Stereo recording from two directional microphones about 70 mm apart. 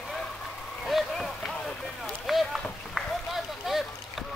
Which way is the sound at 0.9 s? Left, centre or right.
Centre.